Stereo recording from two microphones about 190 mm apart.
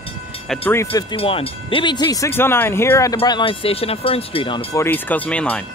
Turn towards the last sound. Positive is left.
turn(degrees=5)  # may be behind; listen again after turning